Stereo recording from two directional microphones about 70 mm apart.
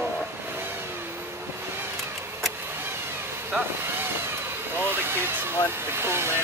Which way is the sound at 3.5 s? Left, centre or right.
Right.